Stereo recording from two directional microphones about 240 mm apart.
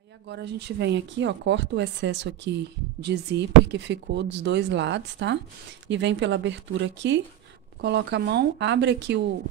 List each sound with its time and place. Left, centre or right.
0.3 s speech: right